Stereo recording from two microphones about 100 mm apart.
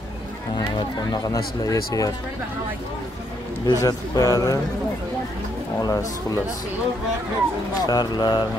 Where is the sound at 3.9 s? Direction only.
35° left (ahead or behind).